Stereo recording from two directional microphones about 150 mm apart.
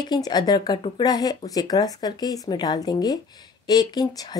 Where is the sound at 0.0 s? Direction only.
25° left (ahead or behind).